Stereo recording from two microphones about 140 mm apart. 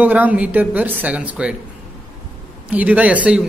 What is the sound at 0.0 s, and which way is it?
A man's voice, 10° right (ahead or behind).